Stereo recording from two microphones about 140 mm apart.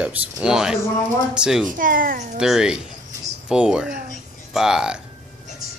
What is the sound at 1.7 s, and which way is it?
Speech, 80° right.